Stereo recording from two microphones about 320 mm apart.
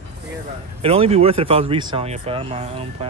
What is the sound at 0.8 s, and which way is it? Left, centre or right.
A man's voice, centre.